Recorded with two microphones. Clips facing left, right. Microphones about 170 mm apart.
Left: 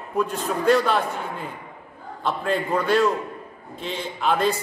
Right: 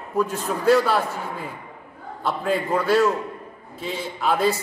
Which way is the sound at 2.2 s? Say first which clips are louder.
Right 1 dB; 5° right (ahead or behind).